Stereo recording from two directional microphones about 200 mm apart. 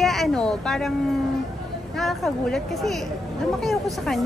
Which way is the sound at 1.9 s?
Centre (ahead or behind).